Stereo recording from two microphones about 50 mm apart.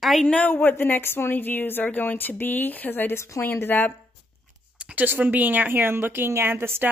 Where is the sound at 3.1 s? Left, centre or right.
Left.